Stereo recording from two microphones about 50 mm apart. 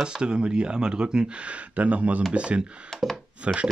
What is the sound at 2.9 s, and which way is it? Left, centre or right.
Speech, centre.